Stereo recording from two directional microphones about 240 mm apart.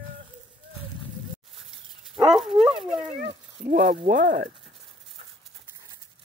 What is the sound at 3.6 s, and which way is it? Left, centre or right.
Speech, right.